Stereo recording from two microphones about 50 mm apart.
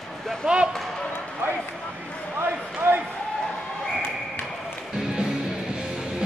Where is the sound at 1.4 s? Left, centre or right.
Right.